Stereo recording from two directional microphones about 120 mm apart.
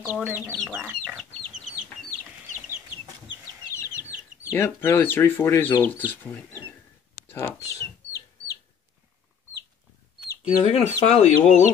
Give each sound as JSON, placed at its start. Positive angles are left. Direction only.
{"t": 0.0, "sound": "speech", "side_deg": -15}
{"t": 1.1, "sound": "chicken", "side_deg": -5}
{"t": 4.5, "sound": "speech", "side_deg": 20}
{"t": 7.2, "sound": "speech", "side_deg": 15}
{"t": 10.4, "sound": "speech", "side_deg": 55}